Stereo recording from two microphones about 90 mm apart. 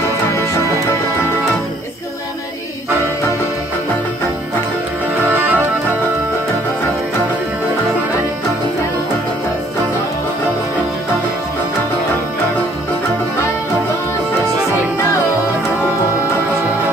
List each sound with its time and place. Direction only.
5.3 s music: 20° right (ahead or behind)